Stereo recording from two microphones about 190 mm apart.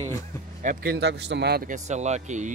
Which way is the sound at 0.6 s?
55° right (ahead or behind).